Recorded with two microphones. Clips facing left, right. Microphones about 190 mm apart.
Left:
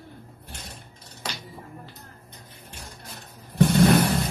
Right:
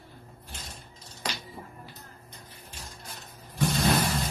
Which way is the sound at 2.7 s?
65° left (ahead or behind).